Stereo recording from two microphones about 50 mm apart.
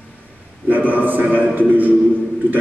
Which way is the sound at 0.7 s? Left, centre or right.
Right.